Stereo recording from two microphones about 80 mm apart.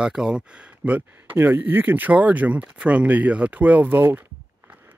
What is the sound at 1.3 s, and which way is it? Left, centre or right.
Speech, right.